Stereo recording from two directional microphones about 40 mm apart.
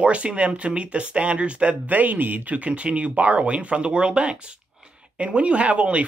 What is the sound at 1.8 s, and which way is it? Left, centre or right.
Speech, right.